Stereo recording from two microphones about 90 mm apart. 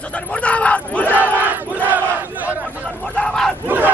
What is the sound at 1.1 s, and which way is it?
Crowd, 20° right (ahead or behind).